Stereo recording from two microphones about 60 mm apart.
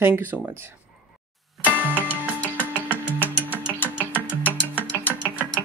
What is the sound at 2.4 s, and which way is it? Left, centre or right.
Music, left.